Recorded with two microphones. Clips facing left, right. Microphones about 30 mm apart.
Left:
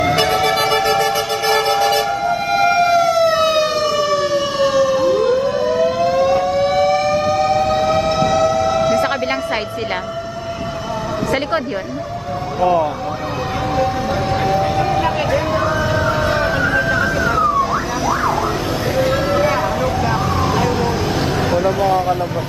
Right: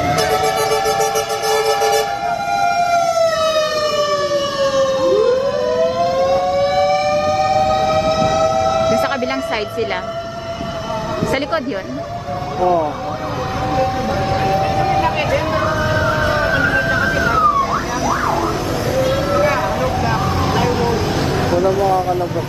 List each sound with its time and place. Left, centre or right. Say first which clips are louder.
0.1 s music: left 1 dB; left
1.5 s music: even; centre
2.5 s siren: left 2 dB; left
2.9 s siren: left 1 dB; centre
14.3 s a sound: even; centre
14.9 s vehicle: right 1 dB; centre
16.3 s music: even; centre
16.5 s vehicle: right 1 dB; centre
19.4 s vehicle: even; centre